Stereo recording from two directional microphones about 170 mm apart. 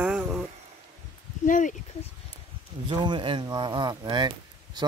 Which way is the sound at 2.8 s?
30° right (ahead or behind).